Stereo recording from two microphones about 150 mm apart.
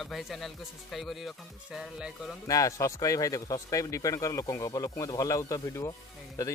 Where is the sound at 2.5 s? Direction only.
20° left (ahead or behind).